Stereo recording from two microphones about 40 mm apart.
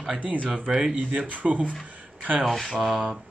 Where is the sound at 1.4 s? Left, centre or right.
Right.